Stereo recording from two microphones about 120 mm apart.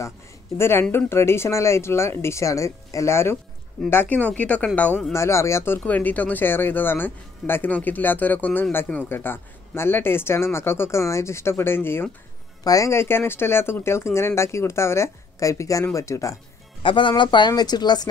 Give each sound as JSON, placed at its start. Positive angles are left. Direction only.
{"t": 0.6, "sound": "speech", "side_deg": 20}
{"t": 5.1, "sound": "speech", "side_deg": 25}
{"t": 16.8, "sound": "speech", "side_deg": 45}